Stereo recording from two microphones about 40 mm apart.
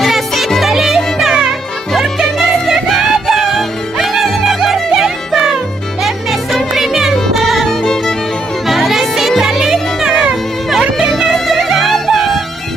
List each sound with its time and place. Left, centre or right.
0.0 s music: centre
2.7 s music: centre
9.6 s music: right
11.2 s music: centre